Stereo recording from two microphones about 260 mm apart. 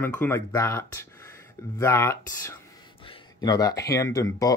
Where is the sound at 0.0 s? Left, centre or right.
Centre.